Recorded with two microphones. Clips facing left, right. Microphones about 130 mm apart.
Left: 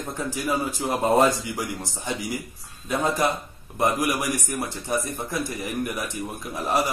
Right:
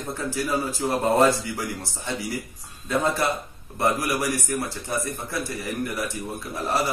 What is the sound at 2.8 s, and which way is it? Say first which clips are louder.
A man's voice: even; 15° left (ahead or behind).